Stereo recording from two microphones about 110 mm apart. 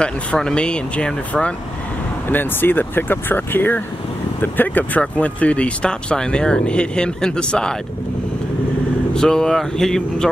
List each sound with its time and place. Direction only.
0.0 s speech: 10° left (ahead or behind)
9.1 s speech: 5° left (ahead or behind)